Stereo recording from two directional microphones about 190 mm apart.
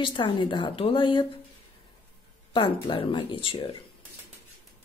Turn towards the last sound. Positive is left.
turn(degrees=25)  # may be behind; listen again after turning